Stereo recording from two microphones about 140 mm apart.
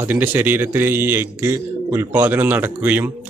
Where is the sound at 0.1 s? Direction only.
15° right (ahead or behind).